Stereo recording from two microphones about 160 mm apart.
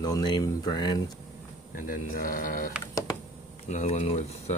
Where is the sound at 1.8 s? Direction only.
60° left (ahead or behind).